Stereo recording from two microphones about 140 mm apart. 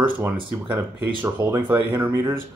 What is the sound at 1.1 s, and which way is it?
Speech, 15° right (ahead or behind).